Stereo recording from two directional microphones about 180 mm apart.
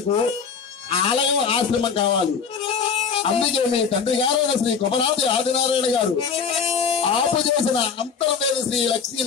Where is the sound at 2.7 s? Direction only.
30° left (ahead or behind).